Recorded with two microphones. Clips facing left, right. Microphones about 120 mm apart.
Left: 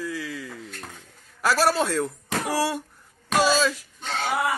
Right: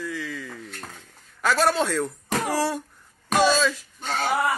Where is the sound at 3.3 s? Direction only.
10° left (ahead or behind).